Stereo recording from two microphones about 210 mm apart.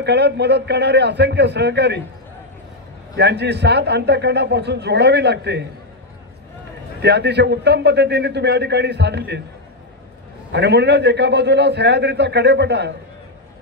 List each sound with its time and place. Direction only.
0.0 s a man's voice: 55° right (ahead or behind)
3.2 s a man's voice: 55° right (ahead or behind)
7.0 s a man's voice: 55° right (ahead or behind)
10.5 s a man's voice: 55° right (ahead or behind)